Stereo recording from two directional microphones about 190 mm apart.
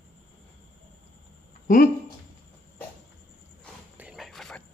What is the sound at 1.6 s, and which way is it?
Speech, 45° left (ahead or behind).